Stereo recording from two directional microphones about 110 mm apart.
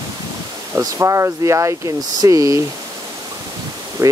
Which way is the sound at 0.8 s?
30° right (ahead or behind).